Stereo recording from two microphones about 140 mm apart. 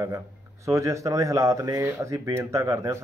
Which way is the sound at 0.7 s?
20° right (ahead or behind).